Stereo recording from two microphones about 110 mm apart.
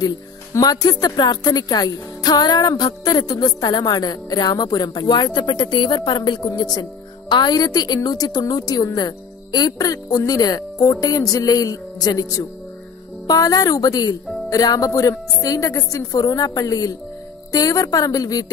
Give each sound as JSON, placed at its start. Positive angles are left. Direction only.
{"t": 0.6, "sound": "speech", "side_deg": 35}